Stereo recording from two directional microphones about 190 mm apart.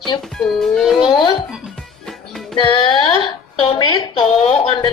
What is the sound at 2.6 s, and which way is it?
Speech, 25° left (ahead or behind).